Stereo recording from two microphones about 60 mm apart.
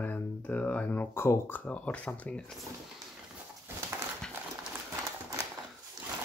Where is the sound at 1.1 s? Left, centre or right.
Left.